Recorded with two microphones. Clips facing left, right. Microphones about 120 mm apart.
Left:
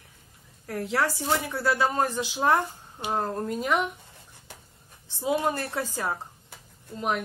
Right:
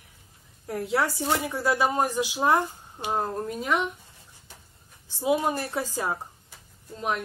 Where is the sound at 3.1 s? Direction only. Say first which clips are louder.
Even; 5° right (ahead or behind).